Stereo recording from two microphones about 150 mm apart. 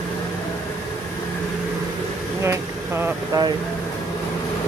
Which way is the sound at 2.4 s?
15° right (ahead or behind).